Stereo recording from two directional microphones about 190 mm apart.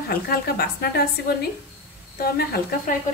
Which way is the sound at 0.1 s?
55° left (ahead or behind).